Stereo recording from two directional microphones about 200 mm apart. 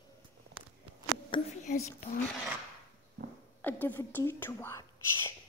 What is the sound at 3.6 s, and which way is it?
Speech, 10° left (ahead or behind).